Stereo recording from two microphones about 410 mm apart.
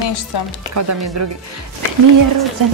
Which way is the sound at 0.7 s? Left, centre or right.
Right.